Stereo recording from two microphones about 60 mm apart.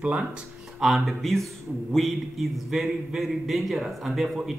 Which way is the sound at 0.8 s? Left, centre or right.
Centre.